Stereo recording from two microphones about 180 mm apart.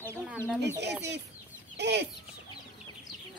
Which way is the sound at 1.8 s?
70° right (ahead or behind).